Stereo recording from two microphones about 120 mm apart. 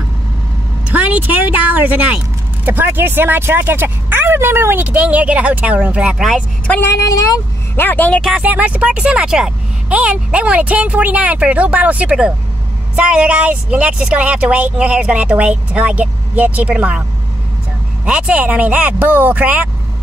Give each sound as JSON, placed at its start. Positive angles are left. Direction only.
{"t": 0.8, "sound": "speech", "side_deg": -10}
{"t": 6.7, "sound": "speech", "side_deg": 25}
{"t": 7.7, "sound": "a man's voice", "side_deg": 15}
{"t": 8.2, "sound": "speech", "side_deg": 0}
{"t": 18.0, "sound": "speech", "side_deg": -10}